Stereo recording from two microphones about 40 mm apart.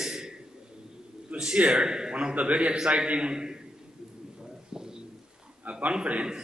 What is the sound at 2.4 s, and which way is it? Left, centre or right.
A man's voice, right.